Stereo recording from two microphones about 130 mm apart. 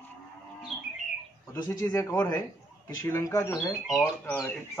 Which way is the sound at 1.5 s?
30° left (ahead or behind).